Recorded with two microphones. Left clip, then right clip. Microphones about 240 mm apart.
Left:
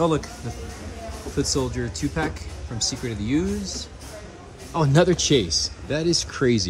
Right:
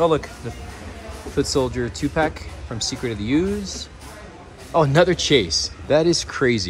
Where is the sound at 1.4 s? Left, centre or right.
Centre.